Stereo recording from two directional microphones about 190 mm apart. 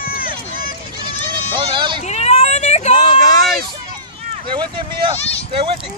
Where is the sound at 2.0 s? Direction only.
35° left (ahead or behind).